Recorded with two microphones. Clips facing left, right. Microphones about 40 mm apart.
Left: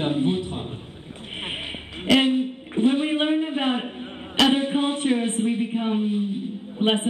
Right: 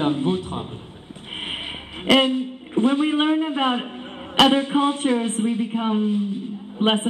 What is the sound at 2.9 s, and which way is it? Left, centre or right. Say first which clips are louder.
Speech: right 1 dB; left.